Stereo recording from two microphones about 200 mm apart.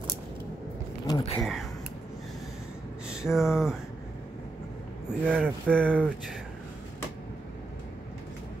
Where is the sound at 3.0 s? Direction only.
Centre (ahead or behind).